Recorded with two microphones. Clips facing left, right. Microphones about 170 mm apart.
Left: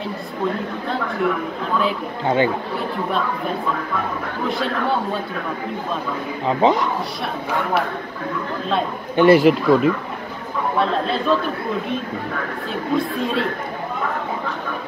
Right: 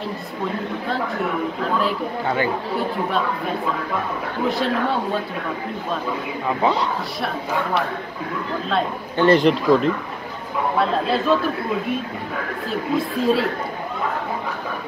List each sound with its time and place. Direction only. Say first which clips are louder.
2.2 s speech: left 5 dB; 20° left (ahead or behind)
4.5 s speech: right 1 dB; centre (ahead or behind)
6.4 s speech: left 4 dB; 20° left (ahead or behind)
9.1 s speech: left 3 dB; 10° left (ahead or behind)
12.9 s speech: right 2 dB; centre (ahead or behind)